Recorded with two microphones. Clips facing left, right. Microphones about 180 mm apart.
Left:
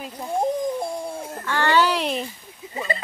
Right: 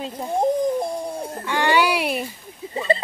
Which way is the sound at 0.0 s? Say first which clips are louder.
Right 3 dB; 25° right (ahead or behind).